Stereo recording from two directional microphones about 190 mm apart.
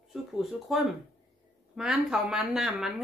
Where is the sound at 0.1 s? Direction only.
Centre (ahead or behind).